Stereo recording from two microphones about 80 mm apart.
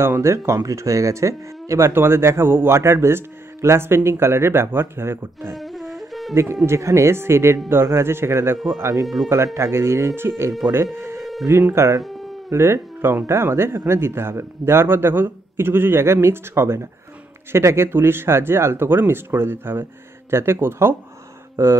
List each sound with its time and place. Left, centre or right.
0.0 s speech: right
5.5 s wind instrument: centre
6.3 s speech: right
8.5 s speech: centre
9.3 s speech: right
11.7 s speech: right